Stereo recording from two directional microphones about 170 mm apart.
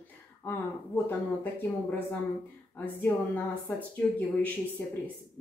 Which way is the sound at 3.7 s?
10° left (ahead or behind).